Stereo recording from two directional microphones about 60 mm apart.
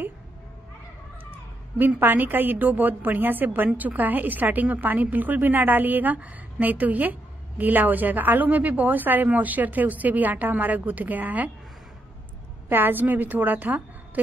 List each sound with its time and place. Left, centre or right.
1.8 s a woman's voice: right
12.6 s a woman's voice: right